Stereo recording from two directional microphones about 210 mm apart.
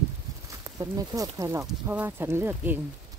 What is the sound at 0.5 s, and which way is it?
Speech, 15° right (ahead or behind).